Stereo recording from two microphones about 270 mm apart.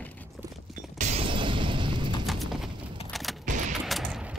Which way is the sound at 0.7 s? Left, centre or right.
Right.